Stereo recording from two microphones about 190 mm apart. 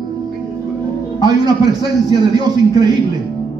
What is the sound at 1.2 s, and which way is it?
A man's voice, 20° right (ahead or behind).